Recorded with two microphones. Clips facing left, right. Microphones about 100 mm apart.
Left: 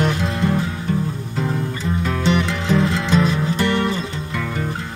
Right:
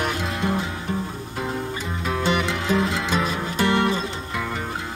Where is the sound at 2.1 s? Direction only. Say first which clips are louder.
Left 2 dB; 10° right (ahead or behind).